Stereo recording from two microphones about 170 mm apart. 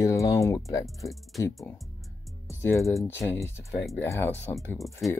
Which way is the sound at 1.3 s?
Centre (ahead or behind).